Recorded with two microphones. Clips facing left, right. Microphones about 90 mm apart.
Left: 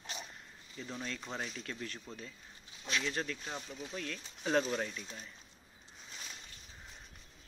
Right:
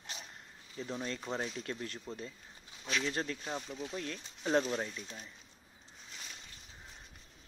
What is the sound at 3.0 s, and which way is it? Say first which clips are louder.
Speech: right 1 dB; 30° right (ahead or behind).